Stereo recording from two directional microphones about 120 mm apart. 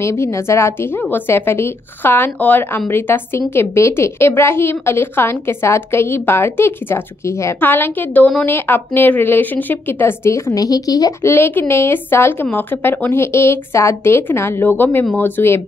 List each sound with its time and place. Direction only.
0.0 s a woman's voice: 25° left (ahead or behind)
11.3 s a woman's voice: 20° left (ahead or behind)